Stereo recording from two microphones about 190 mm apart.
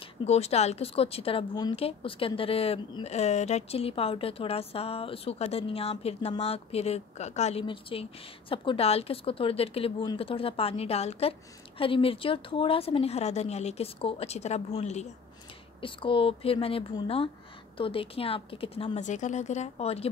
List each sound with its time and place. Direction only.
0.0 s speech: 35° left (ahead or behind)